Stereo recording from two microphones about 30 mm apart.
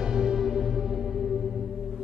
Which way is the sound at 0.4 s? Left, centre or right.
Centre.